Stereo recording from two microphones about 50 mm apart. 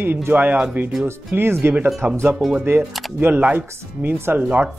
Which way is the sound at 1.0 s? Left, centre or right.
Right.